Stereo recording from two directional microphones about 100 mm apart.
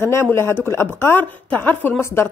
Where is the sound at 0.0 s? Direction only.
25° left (ahead or behind).